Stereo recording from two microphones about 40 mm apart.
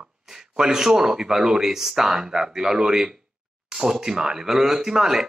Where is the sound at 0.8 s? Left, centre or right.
Centre.